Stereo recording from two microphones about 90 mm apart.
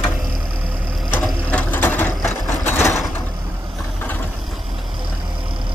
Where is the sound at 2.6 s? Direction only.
25° left (ahead or behind).